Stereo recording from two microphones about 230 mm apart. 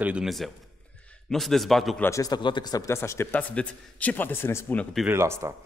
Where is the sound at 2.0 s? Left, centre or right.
Centre.